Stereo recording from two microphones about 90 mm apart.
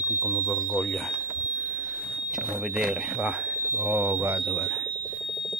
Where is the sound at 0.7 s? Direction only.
15° left (ahead or behind).